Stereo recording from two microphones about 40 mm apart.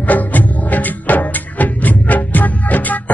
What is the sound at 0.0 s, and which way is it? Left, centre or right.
Music, left.